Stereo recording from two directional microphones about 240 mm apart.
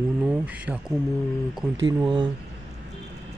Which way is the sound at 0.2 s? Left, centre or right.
Centre.